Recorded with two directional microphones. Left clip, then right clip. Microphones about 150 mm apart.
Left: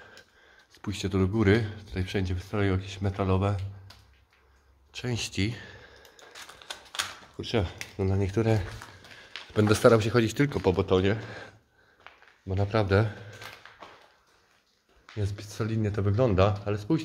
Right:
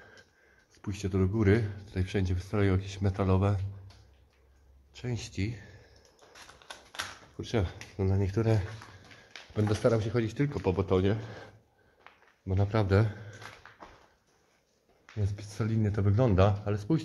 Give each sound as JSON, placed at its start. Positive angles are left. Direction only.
{"t": 0.7, "sound": "speech", "side_deg": 20}
{"t": 1.8, "sound": "speech", "side_deg": 0}
{"t": 4.9, "sound": "speech", "side_deg": 35}
{"t": 6.3, "sound": "a sound", "side_deg": 10}
{"t": 7.9, "sound": "speech", "side_deg": 5}
{"t": 9.5, "sound": "speech", "side_deg": 50}
{"t": 10.9, "sound": "speech", "side_deg": 5}
{"t": 12.1, "sound": "a sound", "side_deg": 0}
{"t": 12.4, "sound": "speech", "side_deg": -5}
{"t": 15.1, "sound": "speech", "side_deg": 5}